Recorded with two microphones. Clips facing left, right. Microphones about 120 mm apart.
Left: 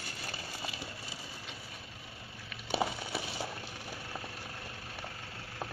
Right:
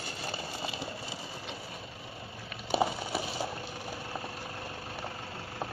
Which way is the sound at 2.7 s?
25° right (ahead or behind).